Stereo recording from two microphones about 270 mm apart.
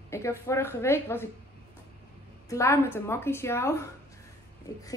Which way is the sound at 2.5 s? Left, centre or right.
Centre.